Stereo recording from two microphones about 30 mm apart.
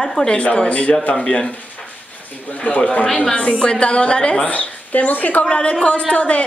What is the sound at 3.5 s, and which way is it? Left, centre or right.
Speech, left.